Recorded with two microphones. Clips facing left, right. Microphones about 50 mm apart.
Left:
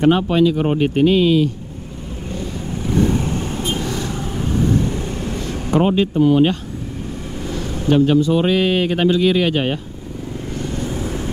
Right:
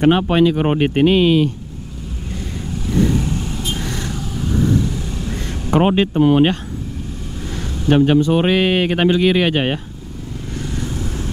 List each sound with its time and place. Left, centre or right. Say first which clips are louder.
0.0 s speech: right 1 dB; right
2.7 s vehicle: even; left
3.8 s vehicle: left 2 dB; centre
4.1 s vehicle: left 1 dB; left
5.7 s speech: right 1 dB; right
7.9 s speech: right 1 dB; right
8.5 s speech: right 1 dB; right
10.7 s vehicle: left 2 dB; centre